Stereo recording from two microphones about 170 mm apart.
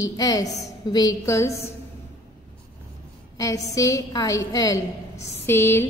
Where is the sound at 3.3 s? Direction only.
20° left (ahead or behind).